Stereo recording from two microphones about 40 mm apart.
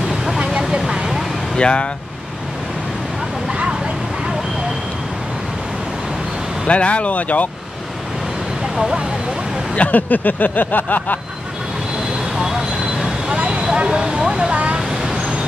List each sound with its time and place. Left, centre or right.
0.6 s vehicle: centre
1.6 s speech: left
6.7 s speech: left
9.8 s speech: left
12.4 s vehicle: centre
13.3 s vehicle: right
13.9 s speech: centre
14.5 s a sound: right
14.9 s vehicle: centre